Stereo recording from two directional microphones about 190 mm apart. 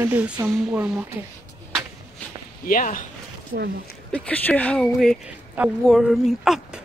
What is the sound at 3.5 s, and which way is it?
Speech, 55° right (ahead or behind).